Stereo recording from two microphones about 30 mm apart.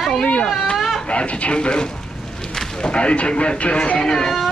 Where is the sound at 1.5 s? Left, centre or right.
Left.